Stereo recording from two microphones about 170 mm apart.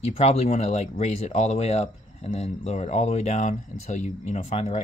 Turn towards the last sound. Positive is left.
turn(degrees=40)  # may be behind; listen again after turning